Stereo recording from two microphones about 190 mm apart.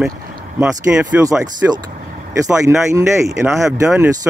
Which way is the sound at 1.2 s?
15° right (ahead or behind).